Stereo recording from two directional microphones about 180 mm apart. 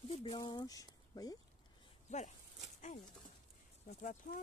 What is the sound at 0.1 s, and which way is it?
Speech, 25° left (ahead or behind).